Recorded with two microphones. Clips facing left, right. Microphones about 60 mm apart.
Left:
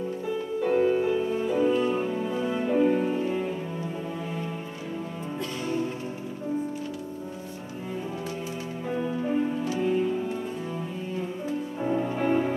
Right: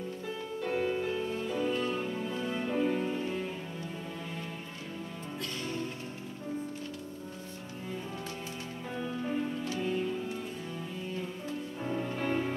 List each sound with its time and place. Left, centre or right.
0.6 s music: centre
8.9 s music: centre
11.1 s music: centre